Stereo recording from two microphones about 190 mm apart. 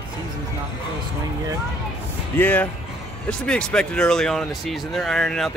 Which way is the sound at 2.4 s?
10° left (ahead or behind).